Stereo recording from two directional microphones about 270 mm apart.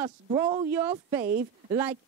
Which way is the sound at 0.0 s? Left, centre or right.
Centre.